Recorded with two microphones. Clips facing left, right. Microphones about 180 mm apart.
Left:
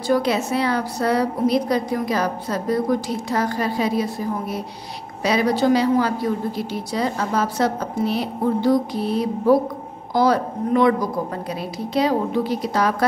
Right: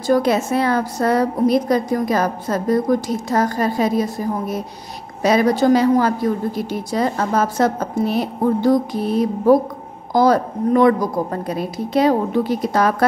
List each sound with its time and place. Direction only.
0.0 s a woman's voice: 45° right (ahead or behind)